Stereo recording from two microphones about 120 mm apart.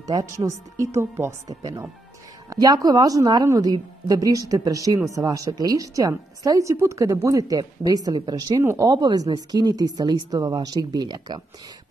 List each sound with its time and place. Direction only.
0.0 s a woman's voice: 30° right (ahead or behind)